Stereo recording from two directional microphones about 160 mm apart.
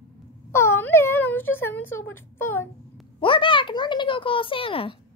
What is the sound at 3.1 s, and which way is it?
A child's voice, 30° left (ahead or behind).